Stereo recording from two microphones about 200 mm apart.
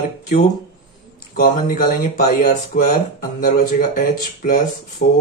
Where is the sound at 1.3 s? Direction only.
45° left (ahead or behind).